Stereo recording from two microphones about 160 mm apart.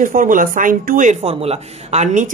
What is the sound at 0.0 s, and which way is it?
Speech, 60° right (ahead or behind).